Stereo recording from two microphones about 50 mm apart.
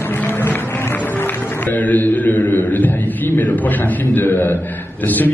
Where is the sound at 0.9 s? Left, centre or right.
Left.